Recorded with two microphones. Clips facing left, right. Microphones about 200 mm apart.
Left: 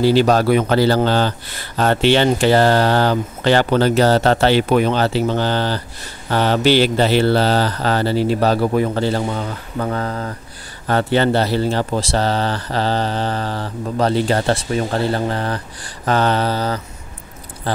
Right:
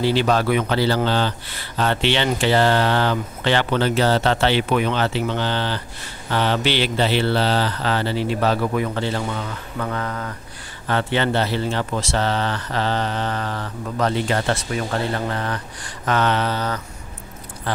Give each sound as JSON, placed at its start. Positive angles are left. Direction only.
{"t": 0.0, "sound": "speech", "side_deg": 40}